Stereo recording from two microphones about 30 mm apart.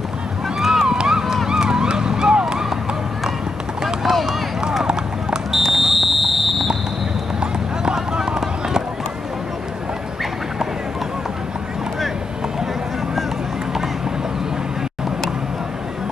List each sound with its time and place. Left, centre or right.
0.6 s a sound: centre
0.8 s run: right
1.2 s run: centre
1.5 s run: right
3.8 s run: centre
4.3 s run: right
5.7 s fire alarm: centre
7.3 s clip-clop: right
8.4 s run: centre